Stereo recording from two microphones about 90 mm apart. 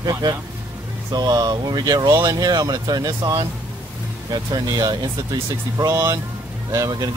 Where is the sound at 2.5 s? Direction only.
50° right (ahead or behind).